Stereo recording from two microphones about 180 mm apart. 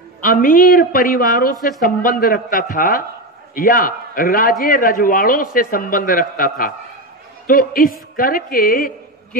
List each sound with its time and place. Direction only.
0.2 s a man's voice: 50° left (ahead or behind)